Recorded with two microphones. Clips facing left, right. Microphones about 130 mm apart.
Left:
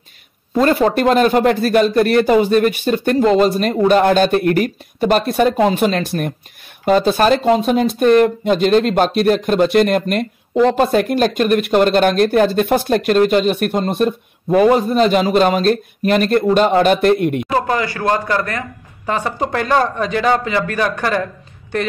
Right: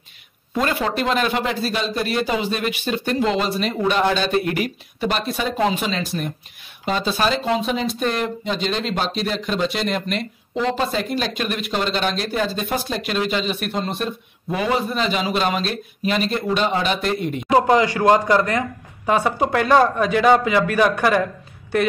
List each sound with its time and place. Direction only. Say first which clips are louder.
0.6 s speech: left 8 dB; 40° left (ahead or behind); by 17.5 s 60° left (ahead or behind)
17.5 s speech: right 2 dB; 20° right (ahead or behind)